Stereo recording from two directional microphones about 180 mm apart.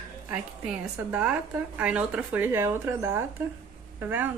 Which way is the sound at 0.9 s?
10° right (ahead or behind).